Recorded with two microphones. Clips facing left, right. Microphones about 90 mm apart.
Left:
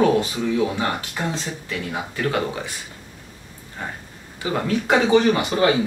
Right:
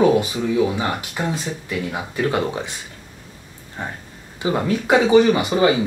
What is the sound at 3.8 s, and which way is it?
Speech, 20° right (ahead or behind).